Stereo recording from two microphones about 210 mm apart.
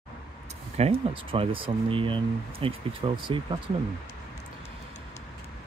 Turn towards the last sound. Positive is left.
turn(degrees=-25)  # may be behind; listen again after turning